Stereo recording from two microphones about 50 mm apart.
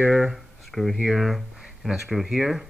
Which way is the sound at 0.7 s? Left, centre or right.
Centre.